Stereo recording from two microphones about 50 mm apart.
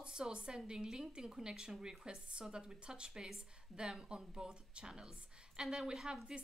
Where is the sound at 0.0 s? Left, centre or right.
Centre.